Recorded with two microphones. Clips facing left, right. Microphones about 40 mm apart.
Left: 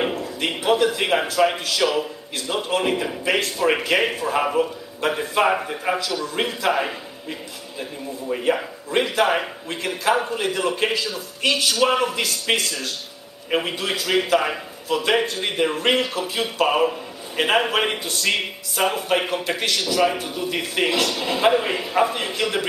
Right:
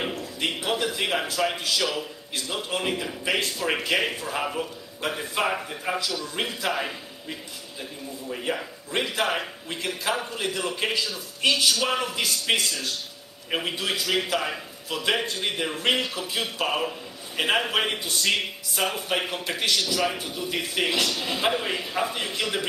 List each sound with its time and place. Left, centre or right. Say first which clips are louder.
0.0 s a sound: left 5 dB; centre
1.3 s a man's voice: left 6 dB; centre
8.3 s a man's voice: left 8 dB; left